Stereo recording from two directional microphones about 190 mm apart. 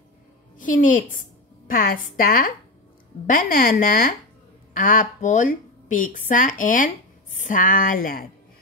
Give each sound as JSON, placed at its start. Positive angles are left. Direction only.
{"t": 0.6, "sound": "speech", "side_deg": 45}